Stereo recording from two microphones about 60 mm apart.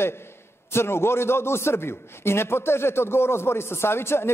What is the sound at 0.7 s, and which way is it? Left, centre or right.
A man's voice, left.